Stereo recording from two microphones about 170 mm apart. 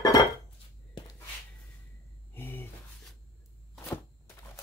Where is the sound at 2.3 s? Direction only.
10° left (ahead or behind).